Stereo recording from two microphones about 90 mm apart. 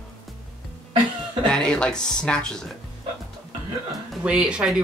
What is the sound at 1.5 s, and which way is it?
Speech, 10° left (ahead or behind).